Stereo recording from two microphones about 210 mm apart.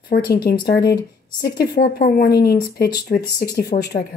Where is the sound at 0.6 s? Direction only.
50° left (ahead or behind).